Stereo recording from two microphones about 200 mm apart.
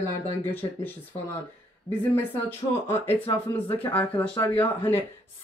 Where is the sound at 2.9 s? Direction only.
30° left (ahead or behind).